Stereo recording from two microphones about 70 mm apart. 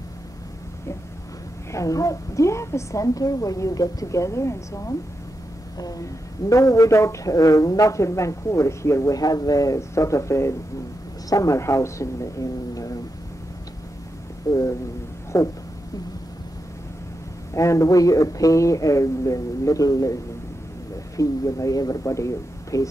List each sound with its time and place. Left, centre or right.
1.7 s speech: left
5.8 s speech: left
11.2 s speech: left
14.5 s speech: left
17.6 s speech: left
21.2 s speech: left